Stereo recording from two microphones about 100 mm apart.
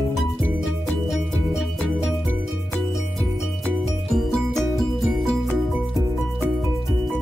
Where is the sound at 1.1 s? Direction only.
5° right (ahead or behind).